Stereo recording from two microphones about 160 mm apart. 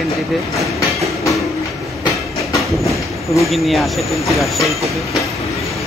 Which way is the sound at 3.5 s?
Centre (ahead or behind).